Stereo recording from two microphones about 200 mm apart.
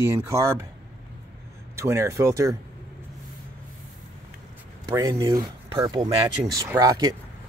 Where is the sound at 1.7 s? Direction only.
15° right (ahead or behind).